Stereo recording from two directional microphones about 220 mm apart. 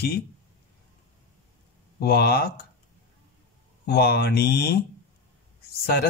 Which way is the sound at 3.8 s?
45° left (ahead or behind).